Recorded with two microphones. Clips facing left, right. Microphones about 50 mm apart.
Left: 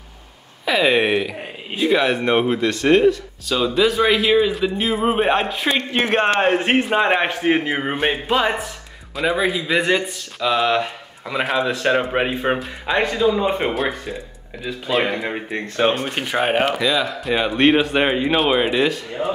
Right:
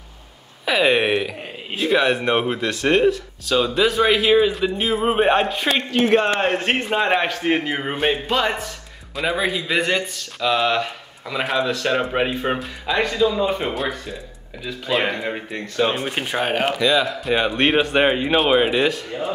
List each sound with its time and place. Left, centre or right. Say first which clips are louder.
0.7 s speech: left 1 dB; centre
5.9 s a man's voice: right 1 dB; left
6.4 s speech: left 3 dB; centre
7.2 s speech: left 2 dB; left
7.5 s speech: left 2 dB; centre
9.1 s speech: left 2 dB; centre
10.8 s a sound: left 1 dB; centre
11.4 s speech: left 1 dB; centre
11.7 s speech: left 2 dB; centre
14.0 s speech: left 3 dB; centre
15.5 s a man's voice: left 2 dB; left
16.3 s speech: left 4 dB; centre
16.8 s speech: right 1 dB; centre
19.2 s speech: left 3 dB; left